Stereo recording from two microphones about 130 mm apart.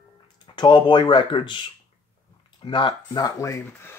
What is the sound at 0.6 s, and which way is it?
Speech, 35° left (ahead or behind).